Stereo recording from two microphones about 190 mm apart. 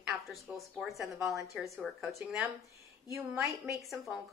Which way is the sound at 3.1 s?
15° right (ahead or behind).